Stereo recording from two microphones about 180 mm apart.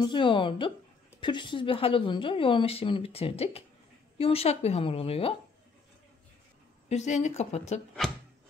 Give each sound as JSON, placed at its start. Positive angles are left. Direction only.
{"t": 0.0, "sound": "a woman's voice", "side_deg": 25}
{"t": 6.9, "sound": "a woman's voice", "side_deg": 40}
{"t": 8.0, "sound": "a sound", "side_deg": 0}